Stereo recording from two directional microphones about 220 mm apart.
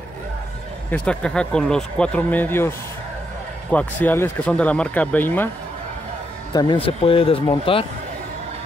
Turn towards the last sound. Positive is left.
turn(degrees=25)  # may be behind; listen again after turning